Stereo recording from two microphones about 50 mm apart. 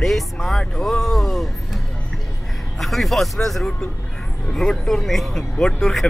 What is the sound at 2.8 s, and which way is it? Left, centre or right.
Speech, centre.